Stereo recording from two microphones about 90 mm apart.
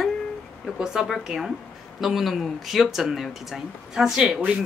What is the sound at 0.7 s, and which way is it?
Speech, 5° right (ahead or behind).